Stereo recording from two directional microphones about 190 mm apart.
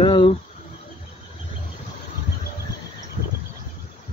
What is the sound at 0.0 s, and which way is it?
Insect, 25° left (ahead or behind).